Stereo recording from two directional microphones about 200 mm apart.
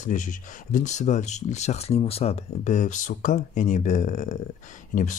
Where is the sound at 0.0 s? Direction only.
40° left (ahead or behind).